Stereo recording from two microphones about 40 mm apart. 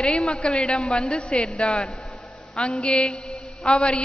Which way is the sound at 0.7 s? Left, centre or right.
Left.